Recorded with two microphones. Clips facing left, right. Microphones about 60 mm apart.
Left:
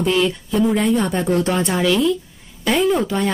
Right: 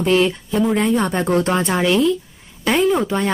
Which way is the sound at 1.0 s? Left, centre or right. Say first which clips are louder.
Right 1 dB; centre.